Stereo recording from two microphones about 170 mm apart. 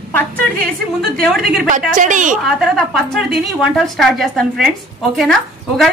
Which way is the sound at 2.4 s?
Centre (ahead or behind).